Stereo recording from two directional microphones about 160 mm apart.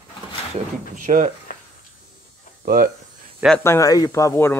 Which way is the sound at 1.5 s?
60° left (ahead or behind).